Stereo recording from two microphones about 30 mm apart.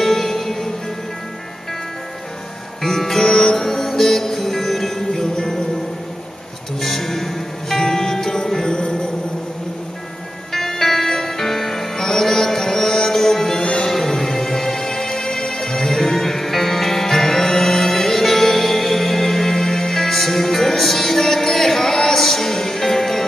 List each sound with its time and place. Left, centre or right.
0.0 s music: centre
2.8 s music: centre
3.5 s music: centre
6.8 s music: centre; by 9.1 s left
10.5 s music: centre